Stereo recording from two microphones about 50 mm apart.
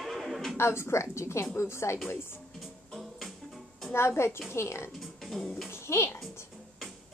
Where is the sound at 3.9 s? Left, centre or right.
Left.